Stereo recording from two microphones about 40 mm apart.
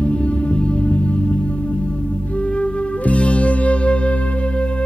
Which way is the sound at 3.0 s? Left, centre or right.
Left.